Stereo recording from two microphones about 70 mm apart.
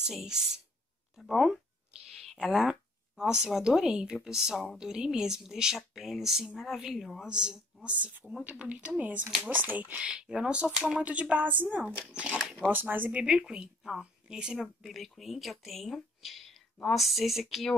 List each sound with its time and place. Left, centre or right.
0.0 s speech: centre
2.0 s a sound: centre
2.3 s speech: centre
7.9 s a woman's voice: right
12.1 s speech: centre
12.7 s a woman's voice: right
13.1 s speech: centre